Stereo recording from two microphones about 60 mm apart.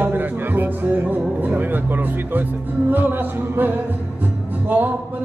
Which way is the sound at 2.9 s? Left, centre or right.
Right.